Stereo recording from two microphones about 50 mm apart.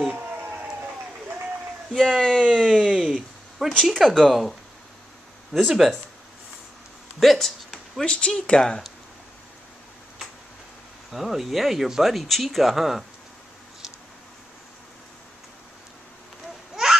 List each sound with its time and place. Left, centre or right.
2.0 s speech: centre
2.6 s speech: centre
3.2 s a sound: centre
3.9 s speech: centre
5.5 s speech: centre
7.2 s a sound: centre
8.0 s speech: centre
11.1 s speech: centre
16.7 s babbling: centre